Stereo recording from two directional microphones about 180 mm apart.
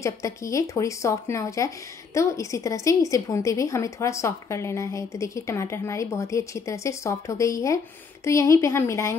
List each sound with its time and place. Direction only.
0.0 s a woman's voice: 15° left (ahead or behind)